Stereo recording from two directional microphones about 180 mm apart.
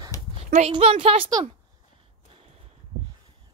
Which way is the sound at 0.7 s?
35° right (ahead or behind).